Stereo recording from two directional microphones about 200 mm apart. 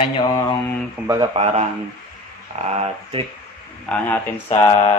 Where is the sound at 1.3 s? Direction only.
30° right (ahead or behind).